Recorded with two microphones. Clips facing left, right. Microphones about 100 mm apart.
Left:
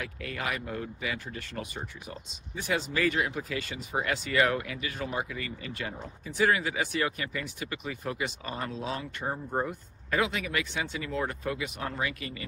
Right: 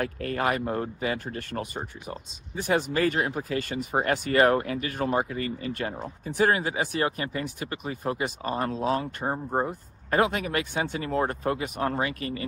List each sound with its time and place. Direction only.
0.0 s speech: 40° right (ahead or behind)